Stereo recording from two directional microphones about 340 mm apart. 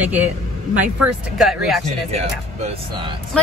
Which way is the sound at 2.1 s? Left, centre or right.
Centre.